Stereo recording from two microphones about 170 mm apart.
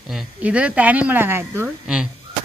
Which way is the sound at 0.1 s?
5° right (ahead or behind).